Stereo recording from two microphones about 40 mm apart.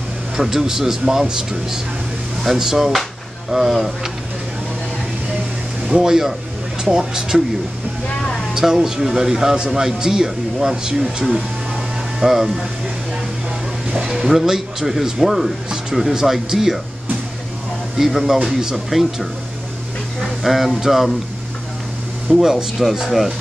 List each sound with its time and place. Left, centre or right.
0.4 s speech: centre
5.9 s speech: centre
8.5 s speech: centre
14.0 s speech: centre
17.9 s speech: centre
20.2 s speech: centre
22.3 s speech: centre